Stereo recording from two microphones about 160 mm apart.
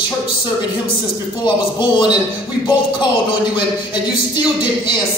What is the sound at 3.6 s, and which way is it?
A man's voice, 30° left (ahead or behind).